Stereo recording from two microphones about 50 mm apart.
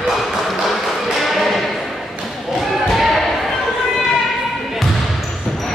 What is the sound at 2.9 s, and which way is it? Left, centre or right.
Basketball bounce, centre.